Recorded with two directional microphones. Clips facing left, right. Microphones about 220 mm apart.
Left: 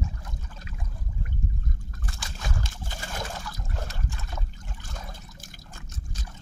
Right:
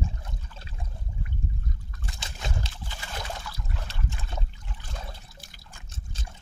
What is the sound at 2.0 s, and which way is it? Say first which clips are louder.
Boat: even; 20° right (ahead or behind).